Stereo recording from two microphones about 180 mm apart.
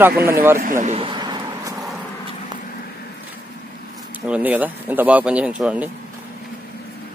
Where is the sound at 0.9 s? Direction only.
25° right (ahead or behind).